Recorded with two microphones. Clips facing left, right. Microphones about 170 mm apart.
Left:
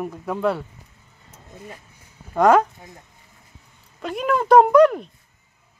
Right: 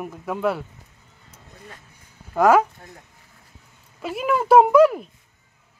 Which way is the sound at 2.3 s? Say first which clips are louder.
Left 1 dB; 5° right (ahead or behind).